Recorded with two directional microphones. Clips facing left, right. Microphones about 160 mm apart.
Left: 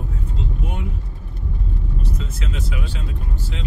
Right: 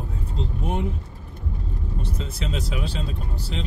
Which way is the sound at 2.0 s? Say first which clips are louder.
Even; 30° right (ahead or behind).